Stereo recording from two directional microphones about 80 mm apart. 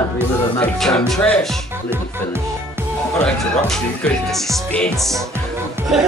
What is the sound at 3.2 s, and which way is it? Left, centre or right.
Speech, centre.